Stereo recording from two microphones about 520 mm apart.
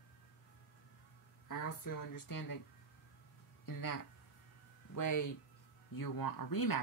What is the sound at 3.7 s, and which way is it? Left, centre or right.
Speech, left.